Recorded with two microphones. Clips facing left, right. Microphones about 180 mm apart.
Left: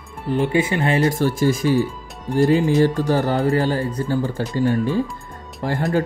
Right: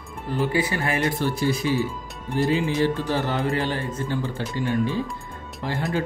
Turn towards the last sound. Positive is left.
turn(degrees=45)  # may be behind; listen again after turning